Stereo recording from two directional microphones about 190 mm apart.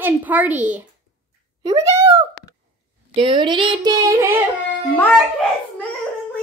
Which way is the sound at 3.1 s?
25° right (ahead or behind).